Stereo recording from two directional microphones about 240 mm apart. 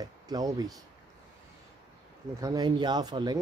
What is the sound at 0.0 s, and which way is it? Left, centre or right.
Speech, centre.